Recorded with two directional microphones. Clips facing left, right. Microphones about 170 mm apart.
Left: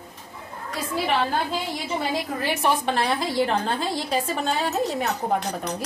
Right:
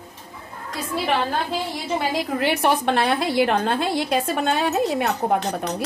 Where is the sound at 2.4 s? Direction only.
65° right (ahead or behind).